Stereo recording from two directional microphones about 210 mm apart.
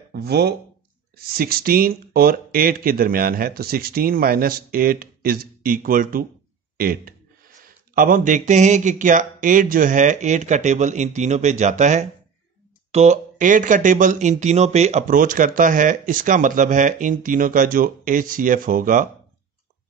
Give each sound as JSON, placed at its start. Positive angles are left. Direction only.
{"t": 0.1, "sound": "speech", "side_deg": -50}